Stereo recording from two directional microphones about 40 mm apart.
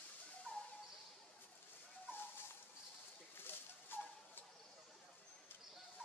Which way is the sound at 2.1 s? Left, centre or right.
Left.